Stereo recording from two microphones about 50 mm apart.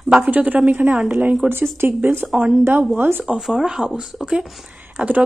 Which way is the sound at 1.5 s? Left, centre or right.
Right.